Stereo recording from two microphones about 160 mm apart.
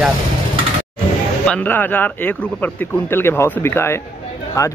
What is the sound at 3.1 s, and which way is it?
Speech, 15° left (ahead or behind).